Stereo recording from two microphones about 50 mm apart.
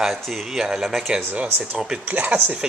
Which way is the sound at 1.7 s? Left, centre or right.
Centre.